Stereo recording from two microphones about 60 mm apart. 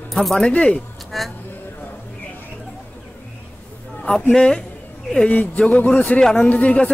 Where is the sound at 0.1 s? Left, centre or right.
Centre.